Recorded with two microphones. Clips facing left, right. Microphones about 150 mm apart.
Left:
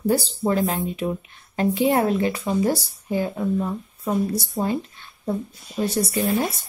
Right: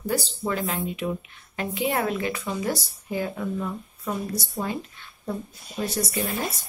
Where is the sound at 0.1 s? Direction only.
35° left (ahead or behind).